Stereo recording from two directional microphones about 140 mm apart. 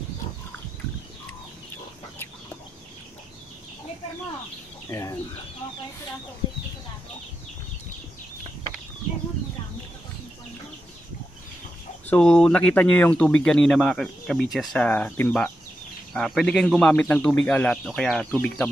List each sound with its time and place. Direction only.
4.8 s speech: 25° left (ahead or behind)
12.1 s speech: 10° left (ahead or behind)
14.9 s a man's voice: 15° left (ahead or behind)